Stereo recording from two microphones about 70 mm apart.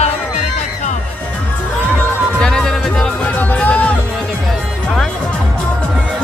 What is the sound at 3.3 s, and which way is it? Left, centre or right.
Music, left.